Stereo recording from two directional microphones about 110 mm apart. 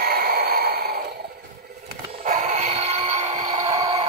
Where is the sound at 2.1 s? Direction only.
90° right.